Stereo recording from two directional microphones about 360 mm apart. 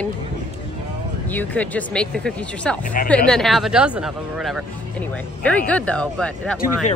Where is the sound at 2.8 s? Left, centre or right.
Left.